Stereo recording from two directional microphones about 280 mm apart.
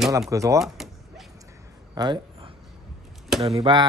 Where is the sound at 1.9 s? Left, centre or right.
Centre.